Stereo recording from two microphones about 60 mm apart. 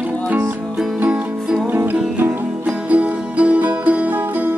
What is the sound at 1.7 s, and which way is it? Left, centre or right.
Music, right.